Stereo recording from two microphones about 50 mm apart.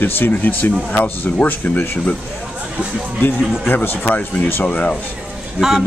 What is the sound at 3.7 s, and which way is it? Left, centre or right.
Speech, left.